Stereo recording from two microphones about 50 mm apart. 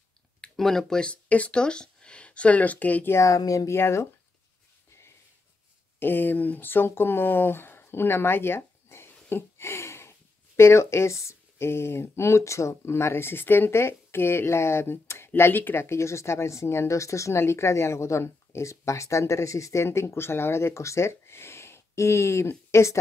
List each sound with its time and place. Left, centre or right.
0.6 s speech: centre
1.1 s speech: left
3.2 s speech: left
3.8 s speech: left
5.9 s speech: left
15.5 s speech: left
15.8 s speech: left